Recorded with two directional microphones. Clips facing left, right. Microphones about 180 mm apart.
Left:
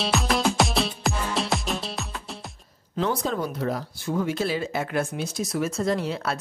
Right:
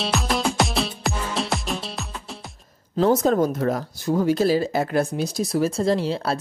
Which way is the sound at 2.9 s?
45° right (ahead or behind).